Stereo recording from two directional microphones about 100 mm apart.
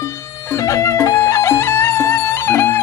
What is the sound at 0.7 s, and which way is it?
Music, 30° left (ahead or behind).